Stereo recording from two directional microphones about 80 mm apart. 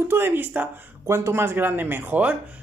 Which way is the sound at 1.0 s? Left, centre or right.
Right.